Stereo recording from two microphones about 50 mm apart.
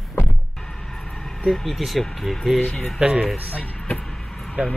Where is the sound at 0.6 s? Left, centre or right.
Centre.